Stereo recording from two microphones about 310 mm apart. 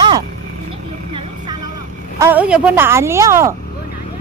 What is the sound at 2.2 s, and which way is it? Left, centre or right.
A woman's voice, centre.